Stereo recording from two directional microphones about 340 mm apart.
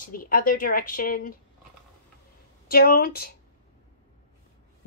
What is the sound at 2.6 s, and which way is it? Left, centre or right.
Speech, left.